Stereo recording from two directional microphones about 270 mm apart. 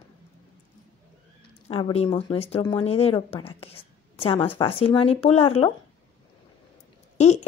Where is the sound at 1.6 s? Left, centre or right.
Left.